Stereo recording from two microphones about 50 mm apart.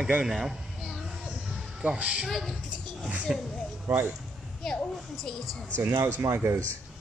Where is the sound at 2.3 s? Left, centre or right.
Centre.